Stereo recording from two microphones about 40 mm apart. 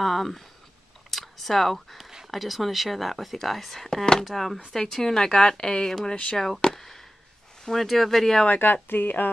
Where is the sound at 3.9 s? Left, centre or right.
Centre.